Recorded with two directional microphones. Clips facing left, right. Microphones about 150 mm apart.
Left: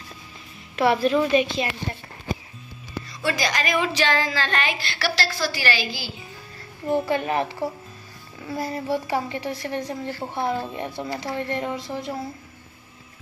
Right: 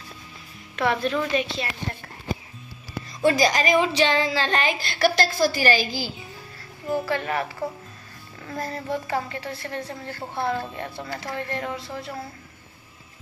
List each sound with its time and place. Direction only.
0.7 s a woman's voice: 10° left (ahead or behind)
3.3 s a woman's voice: 35° right (ahead or behind)
6.9 s speech: 20° left (ahead or behind)
8.5 s a woman's voice: 10° left (ahead or behind)